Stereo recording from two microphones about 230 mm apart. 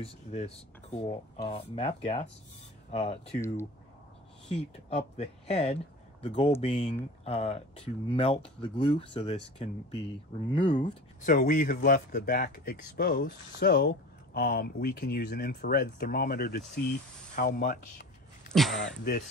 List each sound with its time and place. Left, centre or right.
0.0 s speech: left
3.3 s speech: centre
4.8 s speech: left
10.9 s speech: left
18.5 s speech: centre